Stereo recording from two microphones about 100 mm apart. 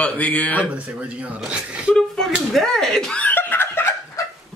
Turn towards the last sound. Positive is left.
turn(degrees=25)  # may be behind; listen again after turning